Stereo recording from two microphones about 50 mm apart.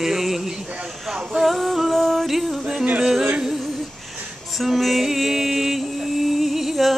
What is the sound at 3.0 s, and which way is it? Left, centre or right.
Music, centre.